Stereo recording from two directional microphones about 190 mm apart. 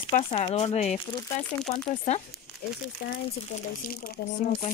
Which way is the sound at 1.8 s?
35° left (ahead or behind).